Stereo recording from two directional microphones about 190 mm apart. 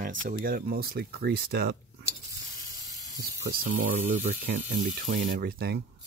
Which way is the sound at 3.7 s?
45° right (ahead or behind).